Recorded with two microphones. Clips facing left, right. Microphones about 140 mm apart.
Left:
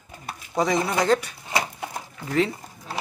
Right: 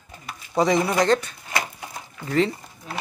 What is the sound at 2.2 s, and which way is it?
Speech, 5° left (ahead or behind).